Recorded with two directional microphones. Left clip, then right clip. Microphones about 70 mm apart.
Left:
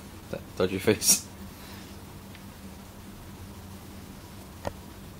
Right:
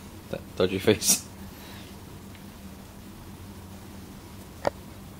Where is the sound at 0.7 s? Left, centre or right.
Centre.